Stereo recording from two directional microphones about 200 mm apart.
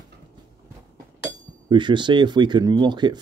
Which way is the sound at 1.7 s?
25° right (ahead or behind).